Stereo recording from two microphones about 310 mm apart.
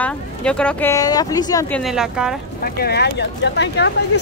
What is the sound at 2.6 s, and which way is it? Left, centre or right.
Speech, left.